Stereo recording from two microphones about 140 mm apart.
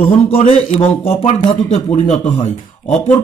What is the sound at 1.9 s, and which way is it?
Speech, 55° left (ahead or behind).